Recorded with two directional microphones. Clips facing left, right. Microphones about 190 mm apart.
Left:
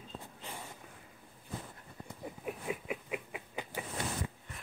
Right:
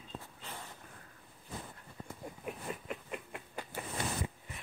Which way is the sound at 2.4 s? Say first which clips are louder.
Left 3 dB; 5° left (ahead or behind).